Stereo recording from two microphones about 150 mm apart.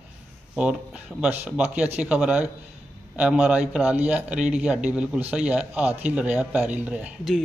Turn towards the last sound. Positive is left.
turn(degrees=-5)  # may be behind; listen again after turning